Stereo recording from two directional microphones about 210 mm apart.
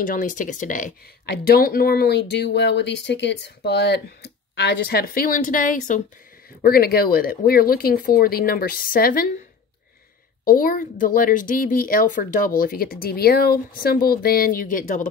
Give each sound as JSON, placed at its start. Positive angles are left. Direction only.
{"t": 0.0, "sound": "speech", "side_deg": 40}
{"t": 10.4, "sound": "speech", "side_deg": 40}